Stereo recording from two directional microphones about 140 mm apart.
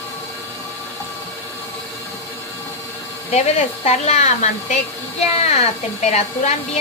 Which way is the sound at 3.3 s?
50° left (ahead or behind).